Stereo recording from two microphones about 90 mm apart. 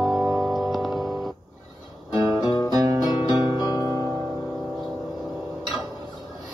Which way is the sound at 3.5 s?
45° left (ahead or behind).